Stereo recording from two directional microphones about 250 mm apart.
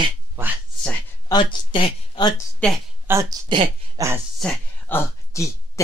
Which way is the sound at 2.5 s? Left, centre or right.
Centre.